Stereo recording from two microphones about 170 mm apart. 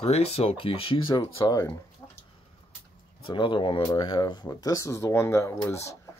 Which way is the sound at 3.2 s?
30° left (ahead or behind).